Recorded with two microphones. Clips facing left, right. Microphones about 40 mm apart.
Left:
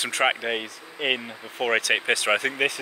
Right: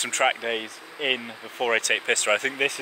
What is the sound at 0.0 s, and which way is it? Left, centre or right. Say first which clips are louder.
Speech: even; centre.